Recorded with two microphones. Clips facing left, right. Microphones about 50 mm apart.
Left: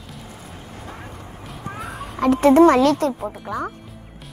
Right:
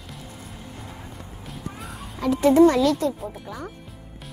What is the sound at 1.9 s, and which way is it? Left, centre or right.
Children playing, left.